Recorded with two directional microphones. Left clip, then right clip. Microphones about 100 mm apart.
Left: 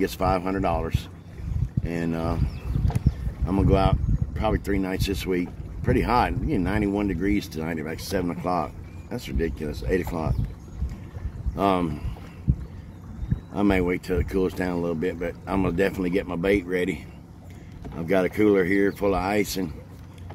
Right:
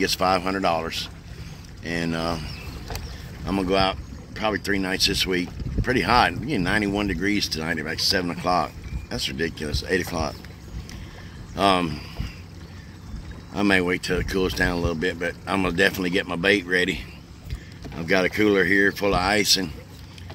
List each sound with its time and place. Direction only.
0.0 s speech: centre (ahead or behind)
3.4 s speech: centre (ahead or behind)
3.7 s speech: 10° left (ahead or behind)
7.9 s speech: 15° left (ahead or behind)
8.3 s speech: 5° left (ahead or behind)
11.5 s speech: 10° left (ahead or behind)
13.5 s boat: 15° left (ahead or behind)
13.7 s speech: 5° left (ahead or behind)
19.0 s speech: 5° left (ahead or behind)